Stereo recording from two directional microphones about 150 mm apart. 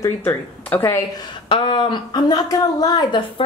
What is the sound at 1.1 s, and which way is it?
A woman's voice, 30° left (ahead or behind).